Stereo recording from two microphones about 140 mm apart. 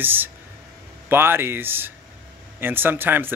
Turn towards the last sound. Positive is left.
turn(degrees=-15)  # may be behind; listen again after turning